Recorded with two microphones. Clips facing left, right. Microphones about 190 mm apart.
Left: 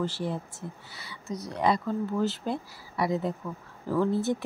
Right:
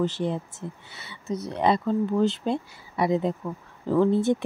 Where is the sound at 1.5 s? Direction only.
25° right (ahead or behind).